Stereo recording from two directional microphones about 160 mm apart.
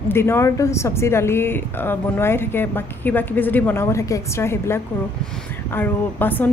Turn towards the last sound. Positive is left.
turn(degrees=10)  # may be behind; listen again after turning